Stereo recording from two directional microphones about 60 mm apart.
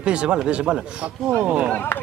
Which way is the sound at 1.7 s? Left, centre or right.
Left.